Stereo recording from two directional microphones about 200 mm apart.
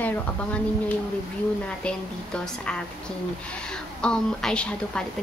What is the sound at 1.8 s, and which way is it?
A woman's voice, 5° left (ahead or behind).